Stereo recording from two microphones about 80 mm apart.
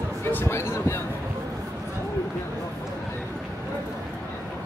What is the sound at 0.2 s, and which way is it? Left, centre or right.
Speech, left.